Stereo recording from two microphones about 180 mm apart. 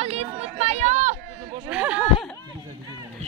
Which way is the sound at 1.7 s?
5° right (ahead or behind).